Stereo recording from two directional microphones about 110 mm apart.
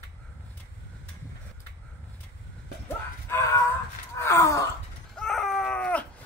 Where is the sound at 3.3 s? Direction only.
25° left (ahead or behind).